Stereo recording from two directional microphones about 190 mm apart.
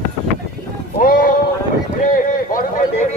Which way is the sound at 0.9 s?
45° left (ahead or behind).